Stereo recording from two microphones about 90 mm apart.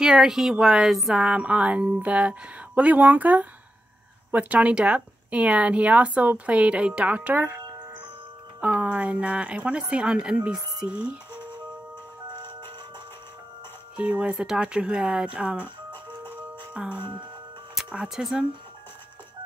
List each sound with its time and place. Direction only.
0.0 s speech: 5° right (ahead or behind)
11.3 s music: 55° right (ahead or behind)
13.9 s speech: 15° right (ahead or behind)
15.9 s music: 65° right (ahead or behind)
16.7 s speech: 10° right (ahead or behind)